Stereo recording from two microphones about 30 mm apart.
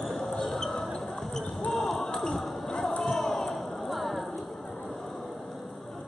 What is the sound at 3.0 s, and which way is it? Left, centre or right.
Ping, centre.